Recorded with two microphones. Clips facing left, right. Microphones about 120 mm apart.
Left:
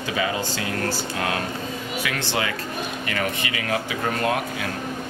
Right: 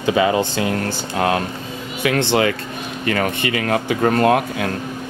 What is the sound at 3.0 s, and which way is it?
Speech, 45° right (ahead or behind).